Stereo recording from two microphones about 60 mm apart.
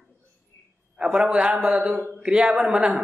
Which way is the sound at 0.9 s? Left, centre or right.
Centre.